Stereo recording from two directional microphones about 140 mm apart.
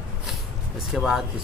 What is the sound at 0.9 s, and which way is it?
Speech, centre (ahead or behind).